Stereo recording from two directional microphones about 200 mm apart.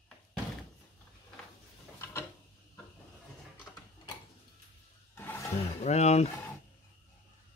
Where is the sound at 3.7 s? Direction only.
5° left (ahead or behind).